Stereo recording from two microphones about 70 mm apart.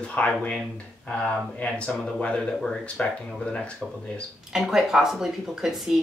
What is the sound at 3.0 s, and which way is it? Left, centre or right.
Speech, centre.